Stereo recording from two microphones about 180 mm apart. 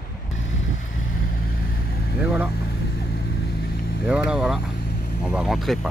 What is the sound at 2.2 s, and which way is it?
Speech, 5° right (ahead or behind).